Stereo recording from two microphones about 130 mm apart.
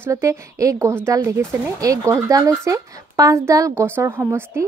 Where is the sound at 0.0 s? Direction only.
20° right (ahead or behind).